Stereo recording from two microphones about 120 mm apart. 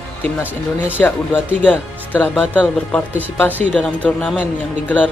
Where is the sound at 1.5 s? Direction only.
15° left (ahead or behind).